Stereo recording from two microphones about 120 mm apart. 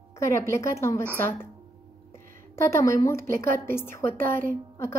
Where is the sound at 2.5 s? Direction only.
25° left (ahead or behind).